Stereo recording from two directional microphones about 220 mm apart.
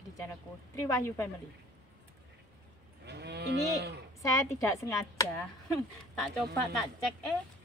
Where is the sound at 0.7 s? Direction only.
15° left (ahead or behind).